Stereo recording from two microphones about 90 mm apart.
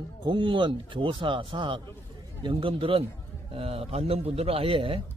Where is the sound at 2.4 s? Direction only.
75° right (ahead or behind).